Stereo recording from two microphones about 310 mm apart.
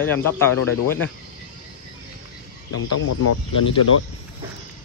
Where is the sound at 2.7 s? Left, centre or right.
Left.